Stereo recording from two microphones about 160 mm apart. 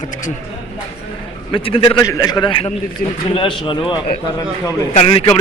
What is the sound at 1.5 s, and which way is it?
A man's voice, 35° left (ahead or behind).